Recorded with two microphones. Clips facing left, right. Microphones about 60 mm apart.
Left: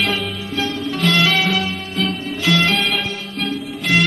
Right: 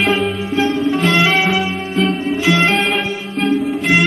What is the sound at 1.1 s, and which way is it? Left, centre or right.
Music, right.